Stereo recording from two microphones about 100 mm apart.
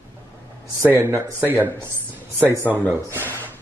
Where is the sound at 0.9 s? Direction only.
20° right (ahead or behind).